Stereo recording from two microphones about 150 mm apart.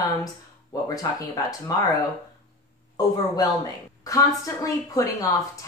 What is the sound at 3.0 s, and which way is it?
Speech, 25° left (ahead or behind).